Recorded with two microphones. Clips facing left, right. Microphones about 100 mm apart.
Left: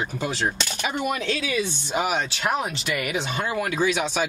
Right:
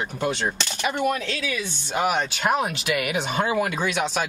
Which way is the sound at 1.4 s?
20° left (ahead or behind).